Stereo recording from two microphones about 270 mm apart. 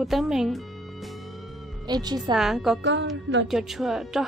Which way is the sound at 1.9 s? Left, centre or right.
Centre.